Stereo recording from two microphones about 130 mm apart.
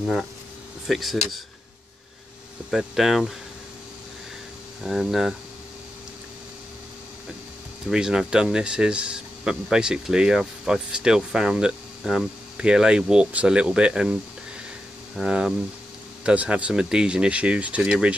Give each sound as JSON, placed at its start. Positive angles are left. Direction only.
{"t": 0.0, "sound": "speech", "side_deg": 0}
{"t": 2.7, "sound": "speech", "side_deg": 0}
{"t": 4.8, "sound": "speech", "side_deg": 0}
{"t": 7.9, "sound": "speech", "side_deg": -5}
{"t": 15.1, "sound": "speech", "side_deg": -5}